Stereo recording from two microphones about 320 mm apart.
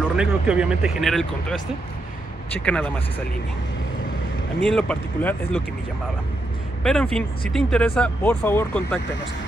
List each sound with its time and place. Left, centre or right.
0.2 s speech: centre
4.6 s speech: centre
6.8 s speech: centre